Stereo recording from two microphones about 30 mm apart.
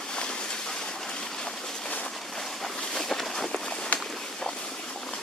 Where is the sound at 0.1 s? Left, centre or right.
Left.